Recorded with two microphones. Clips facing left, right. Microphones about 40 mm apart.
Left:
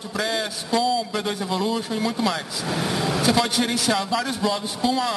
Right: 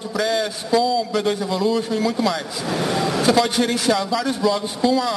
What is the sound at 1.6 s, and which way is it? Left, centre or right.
Speech, centre.